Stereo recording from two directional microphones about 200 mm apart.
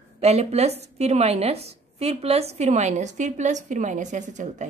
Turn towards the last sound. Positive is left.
turn(degrees=-40)  # may be behind; listen again after turning